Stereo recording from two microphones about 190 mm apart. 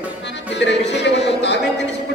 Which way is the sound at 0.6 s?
65° left (ahead or behind).